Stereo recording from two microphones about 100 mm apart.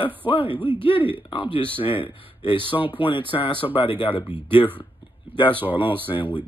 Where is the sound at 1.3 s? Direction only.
60° left (ahead or behind).